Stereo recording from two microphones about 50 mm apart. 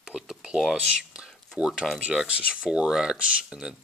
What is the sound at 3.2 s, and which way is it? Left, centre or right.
Speech, centre.